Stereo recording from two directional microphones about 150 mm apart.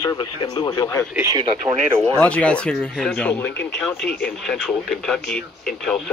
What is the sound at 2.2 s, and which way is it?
Speech, 10° left (ahead or behind).